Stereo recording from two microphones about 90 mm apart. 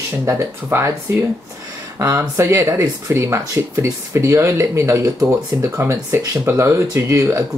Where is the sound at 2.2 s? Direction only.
30° right (ahead or behind).